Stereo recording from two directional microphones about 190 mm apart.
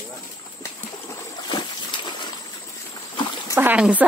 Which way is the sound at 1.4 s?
25° left (ahead or behind).